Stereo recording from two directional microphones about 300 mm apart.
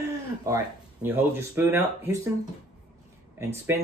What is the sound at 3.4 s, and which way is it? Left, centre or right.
Speech, centre.